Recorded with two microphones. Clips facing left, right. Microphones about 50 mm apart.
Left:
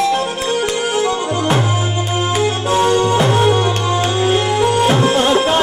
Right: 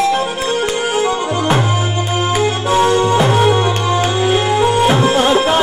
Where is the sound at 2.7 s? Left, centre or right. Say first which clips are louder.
Right 1 dB; centre.